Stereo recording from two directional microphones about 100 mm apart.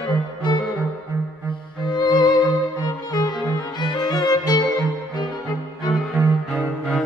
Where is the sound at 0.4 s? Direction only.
50° left (ahead or behind).